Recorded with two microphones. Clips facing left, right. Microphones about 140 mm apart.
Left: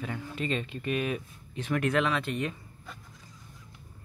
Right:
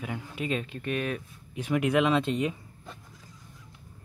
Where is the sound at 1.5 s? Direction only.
10° right (ahead or behind).